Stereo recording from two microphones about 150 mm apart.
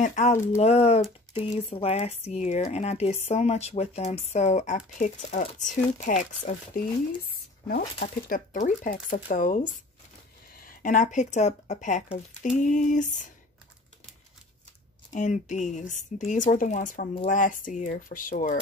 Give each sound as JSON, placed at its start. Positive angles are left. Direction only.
{"t": 0.0, "sound": "speech", "side_deg": 55}
{"t": 8.0, "sound": "speech", "side_deg": 60}
{"t": 15.1, "sound": "speech", "side_deg": 55}